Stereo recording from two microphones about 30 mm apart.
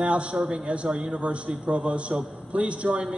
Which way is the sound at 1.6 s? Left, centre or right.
Right.